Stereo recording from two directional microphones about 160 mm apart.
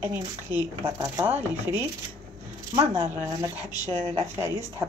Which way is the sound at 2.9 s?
15° right (ahead or behind).